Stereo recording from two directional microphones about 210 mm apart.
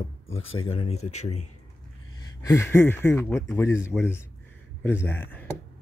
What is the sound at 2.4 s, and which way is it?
Speech, 10° left (ahead or behind).